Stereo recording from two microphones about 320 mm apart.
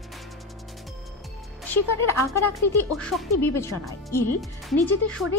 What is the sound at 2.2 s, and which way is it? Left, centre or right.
Speech, centre.